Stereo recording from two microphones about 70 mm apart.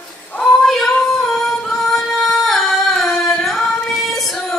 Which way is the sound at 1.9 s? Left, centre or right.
Centre.